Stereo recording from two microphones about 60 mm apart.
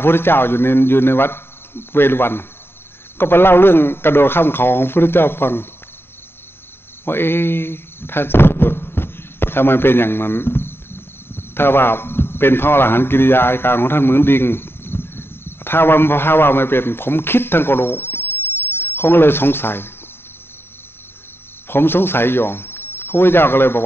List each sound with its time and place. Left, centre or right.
0.0 s a man's voice: left
7.1 s a man's voice: left
21.6 s speech: left